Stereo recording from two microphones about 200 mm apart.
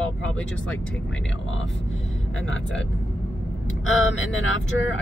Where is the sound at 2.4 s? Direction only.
75° left (ahead or behind).